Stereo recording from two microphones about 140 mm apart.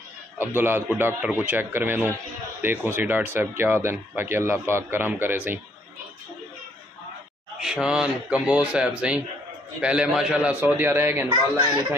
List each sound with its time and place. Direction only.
0.4 s speech: 15° right (ahead or behind)
7.6 s speech: 5° right (ahead or behind)
11.2 s speech: 35° right (ahead or behind)